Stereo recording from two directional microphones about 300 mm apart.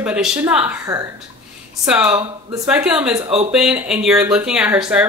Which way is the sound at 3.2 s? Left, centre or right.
Right.